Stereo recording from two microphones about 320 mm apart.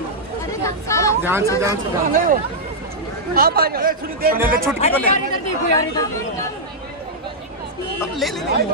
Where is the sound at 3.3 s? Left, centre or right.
Right.